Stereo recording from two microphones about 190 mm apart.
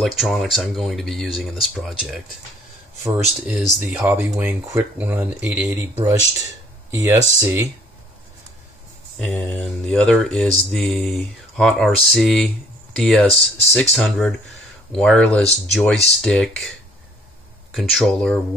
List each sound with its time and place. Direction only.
0.0 s mantra: centre (ahead or behind)
3.0 s speech: 15° right (ahead or behind)
9.2 s mantra: 5° left (ahead or behind)
17.7 s mantra: centre (ahead or behind)